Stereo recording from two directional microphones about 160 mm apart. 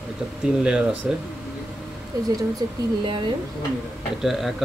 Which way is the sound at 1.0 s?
10° right (ahead or behind).